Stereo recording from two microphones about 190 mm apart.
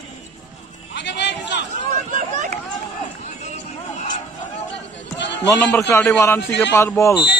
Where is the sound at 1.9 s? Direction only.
45° right (ahead or behind).